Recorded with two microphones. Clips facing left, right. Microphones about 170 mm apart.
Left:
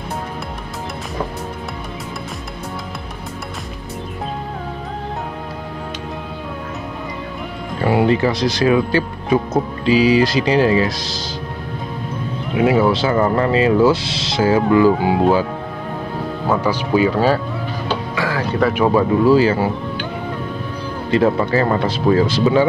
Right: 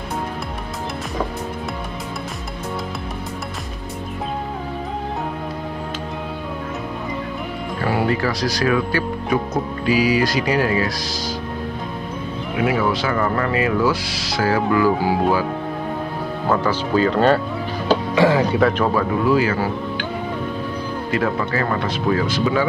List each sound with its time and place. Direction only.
7.8 s speech: 20° left (ahead or behind)
12.5 s speech: 25° left (ahead or behind)
16.4 s speech: 10° left (ahead or behind)
18.1 s speech: 25° right (ahead or behind)
18.6 s speech: 10° left (ahead or behind)
18.9 s speech: 30° left (ahead or behind)
21.1 s speech: 30° left (ahead or behind)